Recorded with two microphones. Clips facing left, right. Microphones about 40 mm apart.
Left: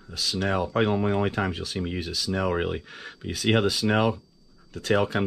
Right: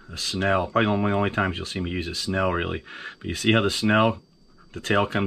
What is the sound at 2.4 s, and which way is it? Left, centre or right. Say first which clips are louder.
Speech: right 2 dB; right.